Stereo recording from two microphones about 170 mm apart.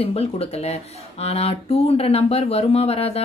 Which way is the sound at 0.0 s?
35° left (ahead or behind).